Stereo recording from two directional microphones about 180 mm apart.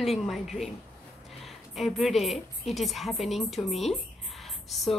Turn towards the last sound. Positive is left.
turn(degrees=0)  # may be behind; listen again after turning